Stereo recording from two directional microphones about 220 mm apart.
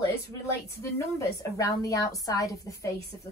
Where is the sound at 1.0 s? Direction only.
15° left (ahead or behind).